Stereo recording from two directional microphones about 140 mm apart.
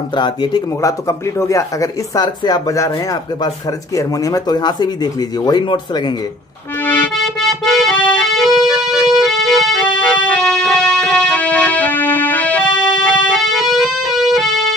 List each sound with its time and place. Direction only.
0.1 s speech: 30° left (ahead or behind)
7.2 s music: centre (ahead or behind)